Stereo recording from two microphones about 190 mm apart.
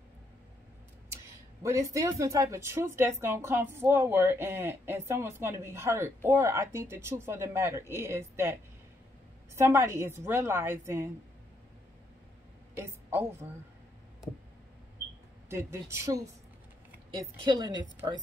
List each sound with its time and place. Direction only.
1.2 s speech: 15° right (ahead or behind)
9.6 s speech: 15° right (ahead or behind)
12.7 s a woman's voice: 10° right (ahead or behind)
15.5 s speech: 15° right (ahead or behind)
17.5 s a woman's voice: 25° right (ahead or behind)